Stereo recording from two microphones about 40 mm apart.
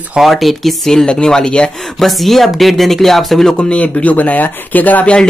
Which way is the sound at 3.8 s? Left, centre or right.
Left.